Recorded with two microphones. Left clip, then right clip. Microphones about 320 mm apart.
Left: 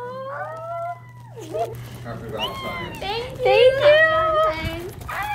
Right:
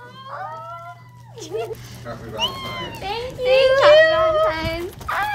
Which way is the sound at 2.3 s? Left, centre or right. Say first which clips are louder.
Right 2 dB; centre.